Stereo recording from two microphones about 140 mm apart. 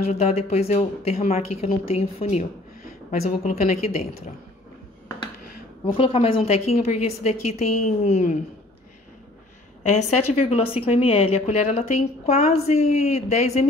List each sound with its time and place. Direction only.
0.1 s a woman's voice: 50° left (ahead or behind)
5.9 s a woman's voice: 40° left (ahead or behind)
9.8 s a woman's voice: 55° left (ahead or behind)